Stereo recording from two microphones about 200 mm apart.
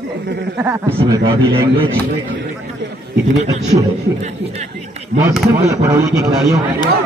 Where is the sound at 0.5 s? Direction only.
10° right (ahead or behind).